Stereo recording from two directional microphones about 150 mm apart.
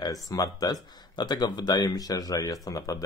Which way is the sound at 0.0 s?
25° left (ahead or behind).